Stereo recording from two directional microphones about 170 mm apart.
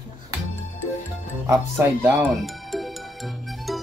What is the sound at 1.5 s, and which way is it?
Speech, 20° right (ahead or behind).